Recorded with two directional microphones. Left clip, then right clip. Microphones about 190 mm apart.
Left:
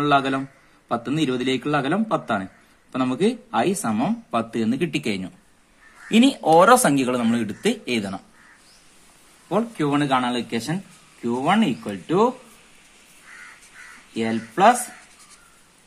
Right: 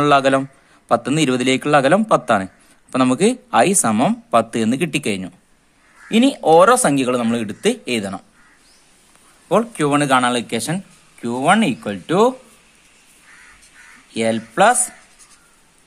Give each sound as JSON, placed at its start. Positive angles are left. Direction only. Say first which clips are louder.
{"t": 0.0, "sound": "a man's voice", "louder": "right 6 dB", "side_deg": -45}
{"t": 9.5, "sound": "a man's voice", "louder": "right 6 dB", "side_deg": -45}
{"t": 14.1, "sound": "a man's voice", "louder": "right 7 dB", "side_deg": -50}